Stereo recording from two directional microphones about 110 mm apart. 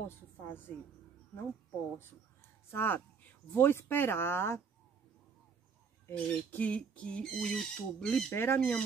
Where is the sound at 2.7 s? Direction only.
20° left (ahead or behind).